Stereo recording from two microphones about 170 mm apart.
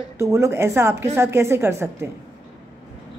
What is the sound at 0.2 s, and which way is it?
A woman's voice, 15° right (ahead or behind).